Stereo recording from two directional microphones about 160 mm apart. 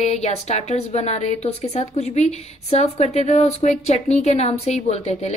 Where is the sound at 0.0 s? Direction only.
40° left (ahead or behind).